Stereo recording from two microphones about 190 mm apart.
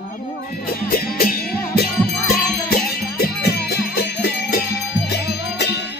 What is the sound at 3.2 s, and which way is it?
Music, 55° left (ahead or behind).